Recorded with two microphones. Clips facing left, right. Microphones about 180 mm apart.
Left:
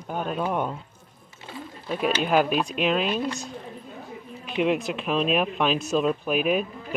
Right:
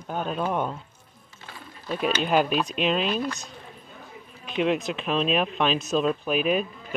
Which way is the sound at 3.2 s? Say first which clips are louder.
Left 1 dB; 25° left (ahead or behind).